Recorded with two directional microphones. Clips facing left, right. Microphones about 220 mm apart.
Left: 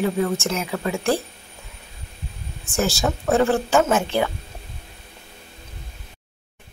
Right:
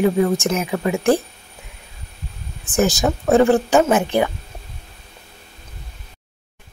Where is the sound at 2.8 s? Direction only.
15° right (ahead or behind).